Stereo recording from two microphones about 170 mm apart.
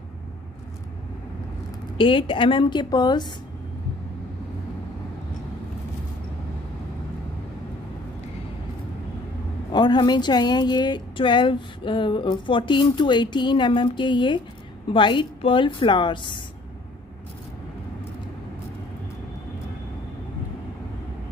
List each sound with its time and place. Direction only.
2.0 s a woman's voice: 30° left (ahead or behind)
9.7 s a woman's voice: 25° left (ahead or behind)